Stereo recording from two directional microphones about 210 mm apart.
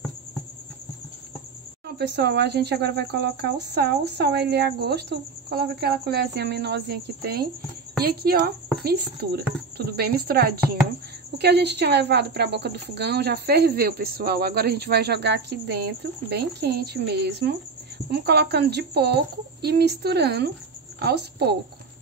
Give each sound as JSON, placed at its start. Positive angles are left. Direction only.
{"t": 2.0, "sound": "a woman's voice", "side_deg": -50}